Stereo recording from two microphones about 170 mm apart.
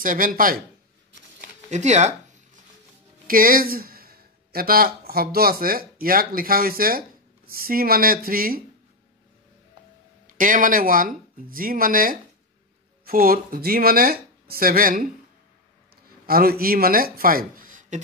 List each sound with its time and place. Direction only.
0.0 s speech: 55° right (ahead or behind)
1.7 s speech: 45° right (ahead or behind)
3.3 s speech: 55° right (ahead or behind)
10.2 s speech: 55° right (ahead or behind)
16.3 s speech: 60° right (ahead or behind)